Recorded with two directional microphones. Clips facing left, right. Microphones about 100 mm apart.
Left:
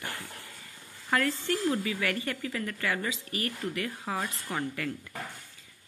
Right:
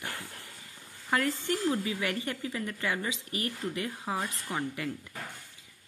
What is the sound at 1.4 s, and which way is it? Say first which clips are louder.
Speech: left 1 dB; 20° right (ahead or behind).